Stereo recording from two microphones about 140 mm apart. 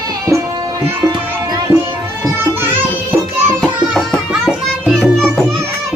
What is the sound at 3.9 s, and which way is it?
Music, centre (ahead or behind).